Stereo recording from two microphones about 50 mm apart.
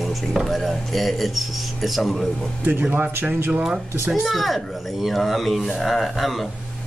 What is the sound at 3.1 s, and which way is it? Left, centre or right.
Speech, right.